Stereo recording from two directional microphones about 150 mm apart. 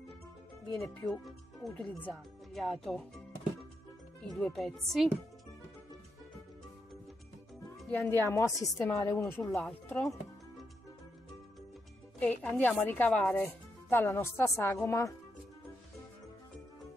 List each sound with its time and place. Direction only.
0.7 s speech: 5° left (ahead or behind)
4.3 s speech: centre (ahead or behind)
7.9 s speech: 15° left (ahead or behind)
12.2 s speech: 10° left (ahead or behind)